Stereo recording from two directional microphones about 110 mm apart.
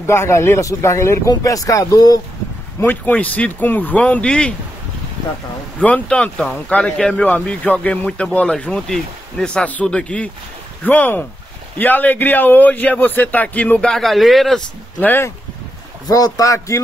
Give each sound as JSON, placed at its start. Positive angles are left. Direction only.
{"t": 0.0, "sound": "a man's voice", "side_deg": 25}
{"t": 2.8, "sound": "speech", "side_deg": 15}
{"t": 5.8, "sound": "speech", "side_deg": 15}
{"t": 15.0, "sound": "a man's voice", "side_deg": 20}
{"t": 16.1, "sound": "speech", "side_deg": 35}